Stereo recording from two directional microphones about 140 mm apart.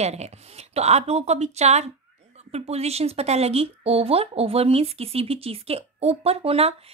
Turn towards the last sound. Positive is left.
turn(degrees=-45)  # may be behind; listen again after turning